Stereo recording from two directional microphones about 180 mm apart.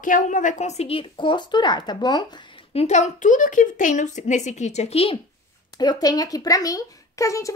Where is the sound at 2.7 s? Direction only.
35° left (ahead or behind).